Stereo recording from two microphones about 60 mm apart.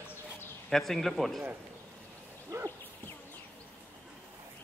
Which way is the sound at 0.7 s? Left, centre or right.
Centre.